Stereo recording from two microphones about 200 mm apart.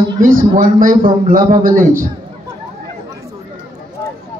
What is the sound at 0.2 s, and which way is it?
A man's voice, 40° right (ahead or behind).